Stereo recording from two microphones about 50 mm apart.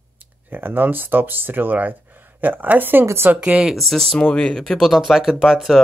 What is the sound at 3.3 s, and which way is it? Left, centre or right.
Speech, right.